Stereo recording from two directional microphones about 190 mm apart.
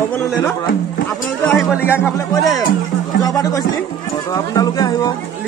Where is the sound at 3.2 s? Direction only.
15° left (ahead or behind).